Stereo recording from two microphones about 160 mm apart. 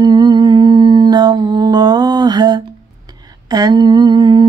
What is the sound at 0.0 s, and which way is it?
Humming, 25° right (ahead or behind).